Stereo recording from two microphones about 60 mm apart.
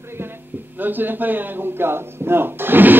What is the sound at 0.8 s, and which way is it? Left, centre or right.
Speech, right.